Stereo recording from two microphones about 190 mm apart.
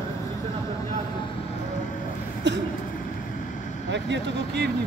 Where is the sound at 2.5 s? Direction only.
70° right (ahead or behind).